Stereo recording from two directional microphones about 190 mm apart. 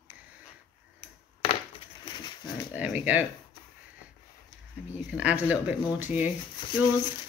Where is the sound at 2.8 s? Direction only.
10° right (ahead or behind).